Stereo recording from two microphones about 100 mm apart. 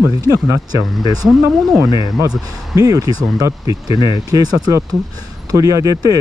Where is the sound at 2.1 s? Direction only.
35° right (ahead or behind).